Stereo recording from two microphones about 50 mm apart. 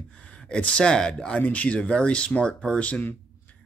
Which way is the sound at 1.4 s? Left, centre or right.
Left.